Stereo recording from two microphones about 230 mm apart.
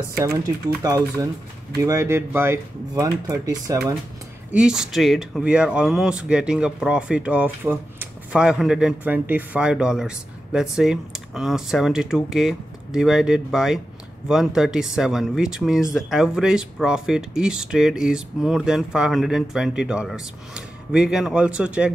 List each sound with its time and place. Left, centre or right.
0.8 s speech: centre
4.5 s speech: centre